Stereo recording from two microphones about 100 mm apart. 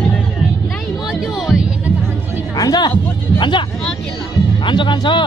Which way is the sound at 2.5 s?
40° left (ahead or behind).